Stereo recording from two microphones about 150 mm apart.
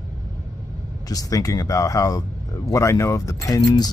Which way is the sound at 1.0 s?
25° left (ahead or behind).